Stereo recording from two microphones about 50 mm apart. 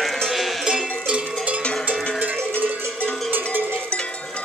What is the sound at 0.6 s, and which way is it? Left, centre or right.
Cowbell, right.